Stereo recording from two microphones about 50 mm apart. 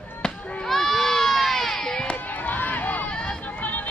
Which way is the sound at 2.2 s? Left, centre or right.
Left.